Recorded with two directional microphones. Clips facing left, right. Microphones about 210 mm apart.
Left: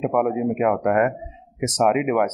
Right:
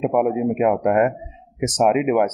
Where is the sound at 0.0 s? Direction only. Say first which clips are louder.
Right 2 dB; 20° right (ahead or behind).